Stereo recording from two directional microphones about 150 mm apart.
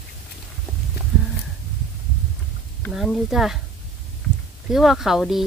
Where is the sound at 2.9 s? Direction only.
Centre (ahead or behind).